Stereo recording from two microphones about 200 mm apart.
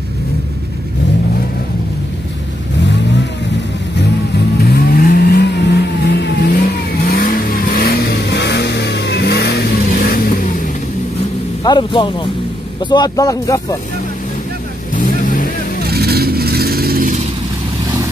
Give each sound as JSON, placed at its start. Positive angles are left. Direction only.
{"t": 4.6, "sound": "vehicle", "side_deg": 50}
{"t": 11.6, "sound": "a man's voice", "side_deg": 25}
{"t": 15.0, "sound": "vehicle", "side_deg": 45}
{"t": 15.8, "sound": "vehicle", "side_deg": -50}